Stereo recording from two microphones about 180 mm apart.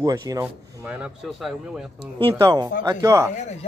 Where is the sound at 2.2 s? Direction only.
30° right (ahead or behind).